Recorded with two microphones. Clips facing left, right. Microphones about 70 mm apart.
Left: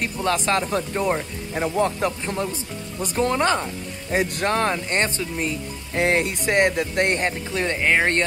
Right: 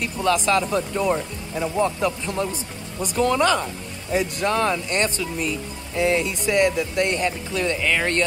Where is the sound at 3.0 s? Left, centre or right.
Left.